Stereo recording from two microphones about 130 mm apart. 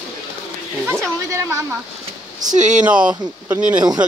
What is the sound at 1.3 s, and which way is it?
Speech, 20° right (ahead or behind).